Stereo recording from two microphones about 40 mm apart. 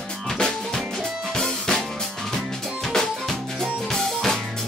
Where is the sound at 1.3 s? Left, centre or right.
Centre.